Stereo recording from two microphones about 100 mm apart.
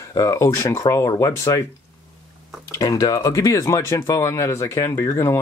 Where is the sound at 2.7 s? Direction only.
40° left (ahead or behind).